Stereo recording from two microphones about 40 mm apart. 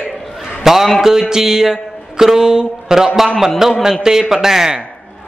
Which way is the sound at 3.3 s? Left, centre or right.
Centre.